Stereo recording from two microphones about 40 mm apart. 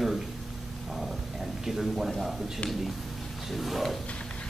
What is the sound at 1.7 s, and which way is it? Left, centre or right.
Speech, centre.